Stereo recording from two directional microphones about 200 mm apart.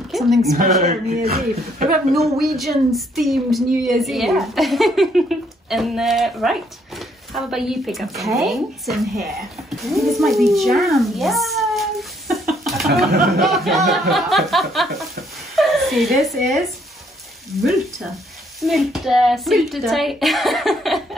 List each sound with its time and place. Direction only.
0.1 s a sound: centre (ahead or behind)
0.8 s speech: 30° right (ahead or behind)
2.1 s a woman's voice: centre (ahead or behind)